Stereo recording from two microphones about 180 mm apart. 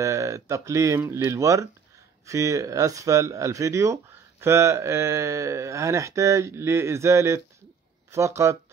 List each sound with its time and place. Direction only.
0.0 s speech: 15° right (ahead or behind)